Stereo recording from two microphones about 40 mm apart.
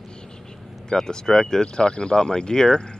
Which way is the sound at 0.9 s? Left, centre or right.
Centre.